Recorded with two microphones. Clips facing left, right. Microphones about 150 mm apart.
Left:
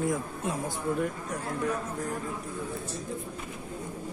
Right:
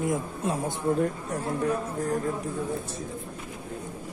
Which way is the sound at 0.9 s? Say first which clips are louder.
Right 4 dB; 35° right (ahead or behind).